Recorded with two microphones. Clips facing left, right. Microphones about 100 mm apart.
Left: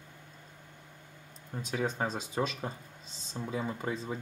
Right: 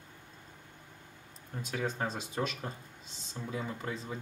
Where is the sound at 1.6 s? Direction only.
30° left (ahead or behind).